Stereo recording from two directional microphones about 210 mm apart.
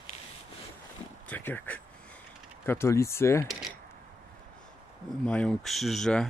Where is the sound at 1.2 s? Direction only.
10° left (ahead or behind).